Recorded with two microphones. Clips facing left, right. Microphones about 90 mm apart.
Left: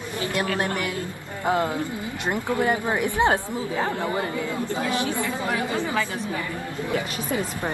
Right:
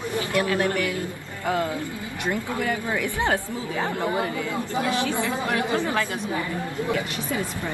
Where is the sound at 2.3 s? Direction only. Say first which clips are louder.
Left 4 dB; 25° left (ahead or behind).